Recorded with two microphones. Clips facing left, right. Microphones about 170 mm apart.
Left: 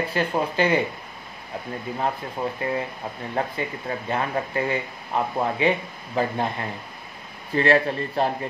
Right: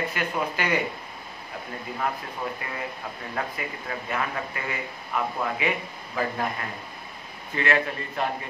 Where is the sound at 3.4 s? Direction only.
30° left (ahead or behind).